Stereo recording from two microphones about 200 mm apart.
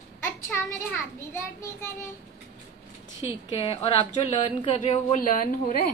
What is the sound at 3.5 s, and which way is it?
A woman's voice, 30° left (ahead or behind).